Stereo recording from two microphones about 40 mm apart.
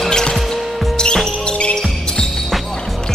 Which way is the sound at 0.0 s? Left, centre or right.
Centre.